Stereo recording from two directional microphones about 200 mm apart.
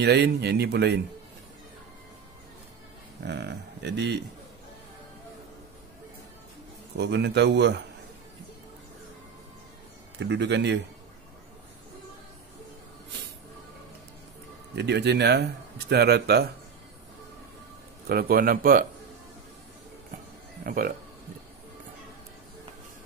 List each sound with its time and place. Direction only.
0.0 s speech: 55° right (ahead or behind)
3.3 s speech: 60° right (ahead or behind)
7.0 s speech: 60° right (ahead or behind)
10.1 s speech: 60° right (ahead or behind)
14.8 s speech: 55° right (ahead or behind)
18.0 s a man's voice: 45° right (ahead or behind)
20.6 s a man's voice: 45° right (ahead or behind)